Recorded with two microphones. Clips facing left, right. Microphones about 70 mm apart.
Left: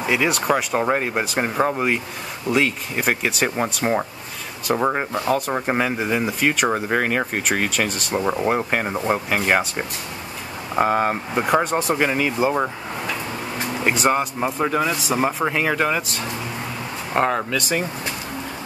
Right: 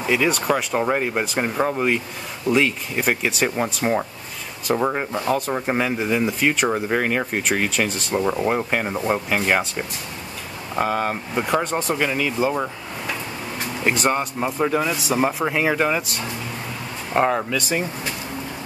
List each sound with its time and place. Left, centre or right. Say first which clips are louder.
0.0 s a man's voice: even; centre
10.8 s speech: left 3 dB; centre
13.8 s a man's voice: left 1 dB; centre